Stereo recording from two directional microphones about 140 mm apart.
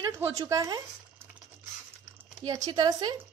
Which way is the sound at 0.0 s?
25° right (ahead or behind).